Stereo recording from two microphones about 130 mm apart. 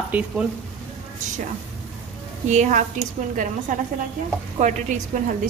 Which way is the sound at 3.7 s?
90° right.